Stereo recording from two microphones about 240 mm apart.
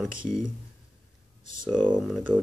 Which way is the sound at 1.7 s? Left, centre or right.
Centre.